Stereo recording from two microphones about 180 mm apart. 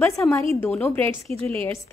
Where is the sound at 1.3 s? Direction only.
30° right (ahead or behind).